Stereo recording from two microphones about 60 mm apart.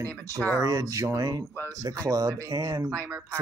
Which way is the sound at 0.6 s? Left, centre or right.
Right.